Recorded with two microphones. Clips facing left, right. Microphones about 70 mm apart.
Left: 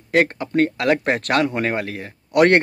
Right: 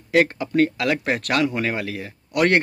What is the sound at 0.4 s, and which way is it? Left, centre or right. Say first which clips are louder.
A man's voice: even; left.